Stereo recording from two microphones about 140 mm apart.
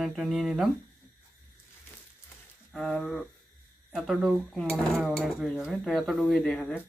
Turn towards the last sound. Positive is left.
turn(degrees=5)  # may be behind; listen again after turning